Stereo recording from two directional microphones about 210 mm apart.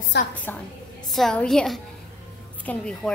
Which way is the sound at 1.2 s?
Centre (ahead or behind).